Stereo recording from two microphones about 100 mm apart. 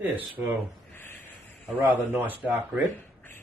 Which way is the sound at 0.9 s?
20° left (ahead or behind).